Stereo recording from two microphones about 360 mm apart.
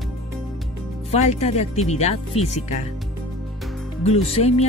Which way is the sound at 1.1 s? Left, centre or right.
Centre.